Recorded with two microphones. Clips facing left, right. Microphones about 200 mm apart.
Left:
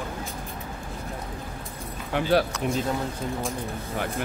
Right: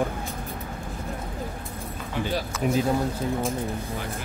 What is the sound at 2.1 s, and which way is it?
Speech, 70° left (ahead or behind).